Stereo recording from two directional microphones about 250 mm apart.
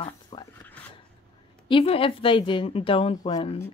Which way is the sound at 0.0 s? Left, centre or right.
Centre.